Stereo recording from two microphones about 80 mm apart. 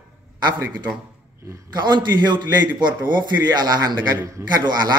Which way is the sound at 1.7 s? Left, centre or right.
Right.